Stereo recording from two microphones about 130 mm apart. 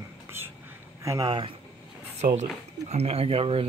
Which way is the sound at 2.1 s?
60° right (ahead or behind).